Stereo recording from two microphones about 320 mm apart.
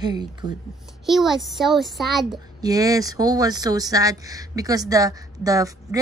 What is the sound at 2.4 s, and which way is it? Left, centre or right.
A woman's voice, centre.